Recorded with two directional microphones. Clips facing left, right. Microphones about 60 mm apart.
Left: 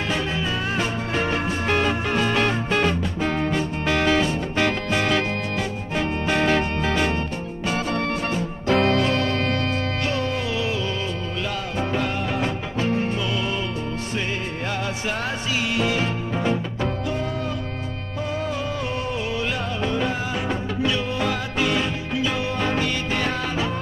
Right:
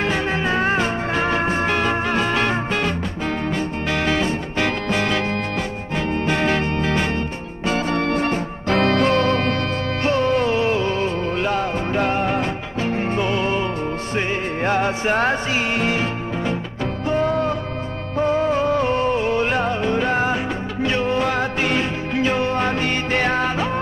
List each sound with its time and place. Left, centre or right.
0.0 s music: right
8.2 s music: right
10.0 s music: right
17.1 s music: right